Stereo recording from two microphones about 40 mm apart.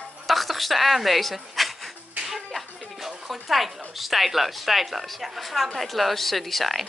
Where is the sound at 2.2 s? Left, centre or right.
Centre.